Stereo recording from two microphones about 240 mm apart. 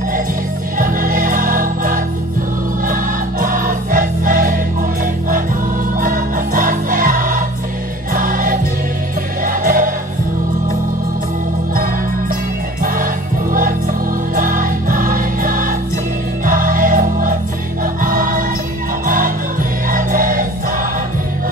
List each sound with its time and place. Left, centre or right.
0.7 s music: right
5.9 s music: right
12.8 s music: right